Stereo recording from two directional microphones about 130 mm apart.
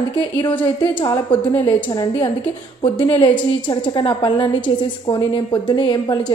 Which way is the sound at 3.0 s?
40° left (ahead or behind).